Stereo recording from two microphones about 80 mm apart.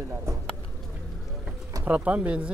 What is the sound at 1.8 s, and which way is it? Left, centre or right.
Speech, centre.